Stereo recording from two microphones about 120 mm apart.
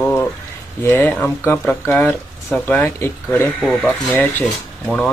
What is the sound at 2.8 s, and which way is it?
Speech, 15° left (ahead or behind).